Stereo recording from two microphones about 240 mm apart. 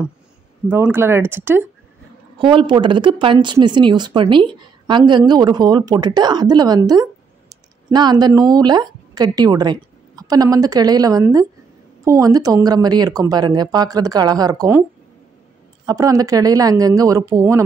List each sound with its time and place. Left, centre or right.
0.7 s speech: centre
2.3 s speech: right